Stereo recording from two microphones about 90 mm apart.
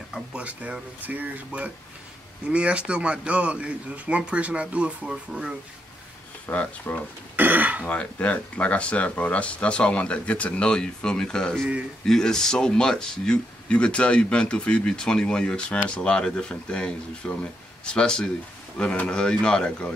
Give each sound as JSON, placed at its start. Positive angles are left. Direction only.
{"t": 0.3, "sound": "speech", "side_deg": -15}
{"t": 6.4, "sound": "speech", "side_deg": 15}
{"t": 7.3, "sound": "speech", "side_deg": -20}
{"t": 7.8, "sound": "speech", "side_deg": 15}